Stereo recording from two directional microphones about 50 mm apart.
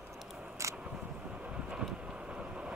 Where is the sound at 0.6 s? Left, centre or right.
Right.